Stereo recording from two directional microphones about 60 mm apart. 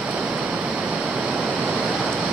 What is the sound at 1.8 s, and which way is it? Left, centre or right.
Waves, right.